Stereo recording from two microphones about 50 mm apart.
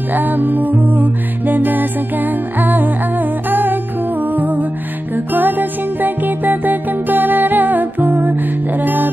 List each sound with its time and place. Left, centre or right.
0.1 s music: right